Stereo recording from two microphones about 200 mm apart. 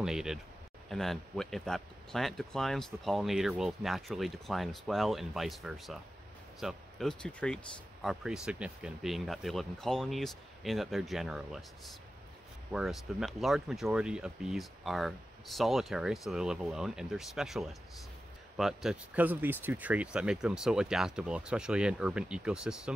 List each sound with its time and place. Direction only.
0.0 s speech: 5° right (ahead or behind)